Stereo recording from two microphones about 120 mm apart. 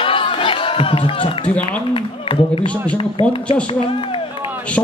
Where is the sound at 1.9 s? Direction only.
50° left (ahead or behind).